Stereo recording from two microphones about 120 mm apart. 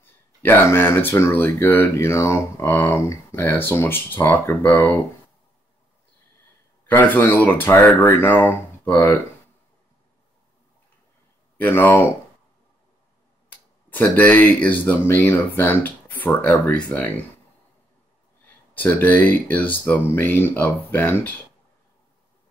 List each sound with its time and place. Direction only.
0.0 s speech: 15° left (ahead or behind)
6.9 s speech: 15° left (ahead or behind)
11.5 s speech: 15° left (ahead or behind)
13.5 s speech: 15° left (ahead or behind)
18.8 s speech: 15° left (ahead or behind)